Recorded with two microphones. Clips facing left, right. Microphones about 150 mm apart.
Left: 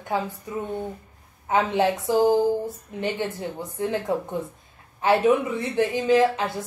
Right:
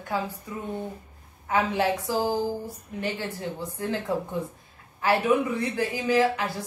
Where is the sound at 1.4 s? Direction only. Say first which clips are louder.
Left 3 dB; 20° left (ahead or behind).